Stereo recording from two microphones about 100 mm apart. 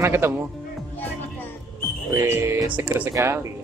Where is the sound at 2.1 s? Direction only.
25° right (ahead or behind).